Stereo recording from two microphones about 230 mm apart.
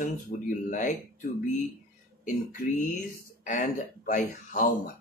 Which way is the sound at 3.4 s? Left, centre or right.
Left.